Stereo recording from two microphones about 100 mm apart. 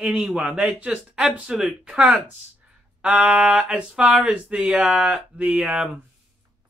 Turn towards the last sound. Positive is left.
turn(degrees=-10)  # may be behind; listen again after turning